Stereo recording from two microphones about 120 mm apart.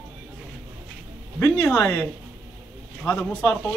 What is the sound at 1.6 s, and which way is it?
Speech, 20° left (ahead or behind).